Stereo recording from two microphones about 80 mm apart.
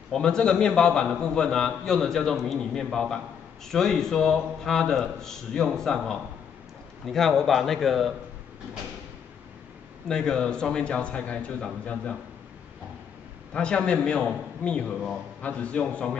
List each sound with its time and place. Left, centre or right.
0.1 s a man's voice: centre
10.0 s a man's voice: centre
13.5 s a man's voice: centre